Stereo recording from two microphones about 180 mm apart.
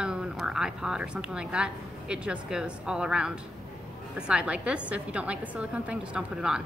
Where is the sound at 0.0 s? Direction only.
5° right (ahead or behind).